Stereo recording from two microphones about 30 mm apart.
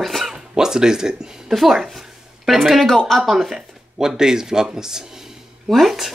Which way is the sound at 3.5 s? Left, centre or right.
Right.